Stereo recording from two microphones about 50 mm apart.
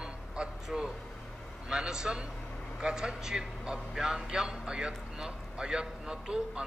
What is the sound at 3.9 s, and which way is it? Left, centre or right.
A man's voice, centre.